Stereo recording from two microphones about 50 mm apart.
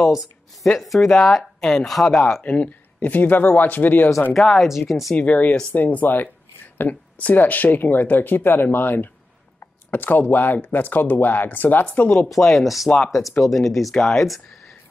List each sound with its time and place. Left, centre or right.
0.7 s speech: centre
2.4 s speech: left
4.3 s speech: centre
5.1 s speech: left
12.3 s speech: centre